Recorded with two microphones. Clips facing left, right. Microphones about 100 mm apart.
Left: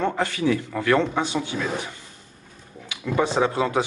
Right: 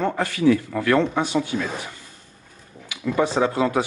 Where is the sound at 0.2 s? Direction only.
25° left (ahead or behind).